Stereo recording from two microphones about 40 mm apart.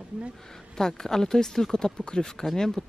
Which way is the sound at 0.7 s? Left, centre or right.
Centre.